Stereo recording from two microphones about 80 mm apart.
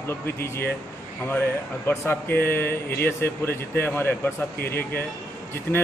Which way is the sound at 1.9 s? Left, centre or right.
Left.